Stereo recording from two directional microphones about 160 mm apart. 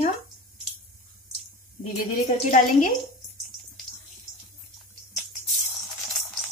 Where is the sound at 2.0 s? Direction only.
55° left (ahead or behind).